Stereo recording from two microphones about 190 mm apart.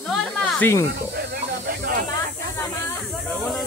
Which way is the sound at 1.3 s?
45° right (ahead or behind).